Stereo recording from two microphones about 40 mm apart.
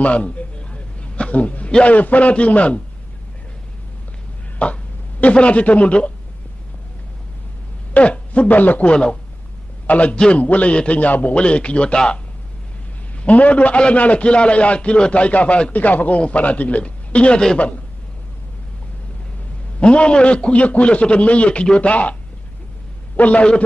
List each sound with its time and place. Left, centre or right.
0.0 s a sound: left
1.9 s a man's voice: left
4.6 s a man's voice: left
7.9 s a man's voice: left
8.8 s a man's voice: left
11.3 s a man's voice: left
13.2 s a man's voice: left
15.7 s a man's voice: left
19.8 s a man's voice: left
23.1 s a man's voice: left